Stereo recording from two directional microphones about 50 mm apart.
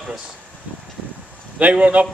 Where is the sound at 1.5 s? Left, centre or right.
Right.